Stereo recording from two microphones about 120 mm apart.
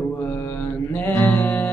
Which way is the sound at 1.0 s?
15° left (ahead or behind).